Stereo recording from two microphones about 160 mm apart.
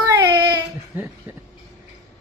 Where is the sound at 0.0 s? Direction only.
25° right (ahead or behind).